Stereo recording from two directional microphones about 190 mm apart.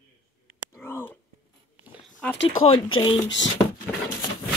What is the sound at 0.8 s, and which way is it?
Speech, 10° left (ahead or behind).